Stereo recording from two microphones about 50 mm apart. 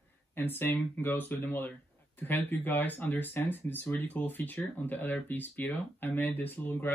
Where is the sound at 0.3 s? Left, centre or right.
Left.